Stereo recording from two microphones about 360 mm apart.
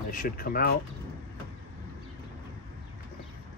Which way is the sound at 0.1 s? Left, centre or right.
Left.